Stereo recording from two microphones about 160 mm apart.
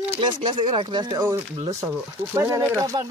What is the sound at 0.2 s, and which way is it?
Speech, 30° right (ahead or behind).